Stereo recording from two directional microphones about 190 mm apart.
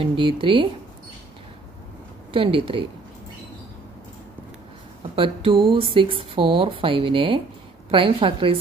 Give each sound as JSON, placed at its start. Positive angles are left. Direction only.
{"t": 0.0, "sound": "speech", "side_deg": -25}
{"t": 2.3, "sound": "speech", "side_deg": -30}
{"t": 5.1, "sound": "speech", "side_deg": -30}